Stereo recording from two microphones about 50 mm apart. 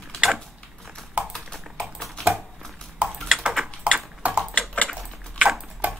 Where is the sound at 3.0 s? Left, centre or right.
Right.